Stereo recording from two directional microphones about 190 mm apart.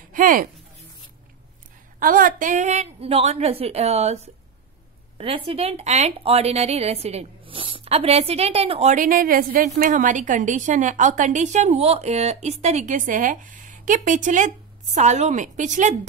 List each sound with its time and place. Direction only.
0.1 s speech: 45° right (ahead or behind)
2.0 s a woman's voice: 45° right (ahead or behind)